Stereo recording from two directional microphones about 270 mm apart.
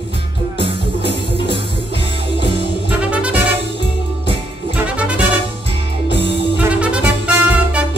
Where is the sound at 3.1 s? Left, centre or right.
Centre.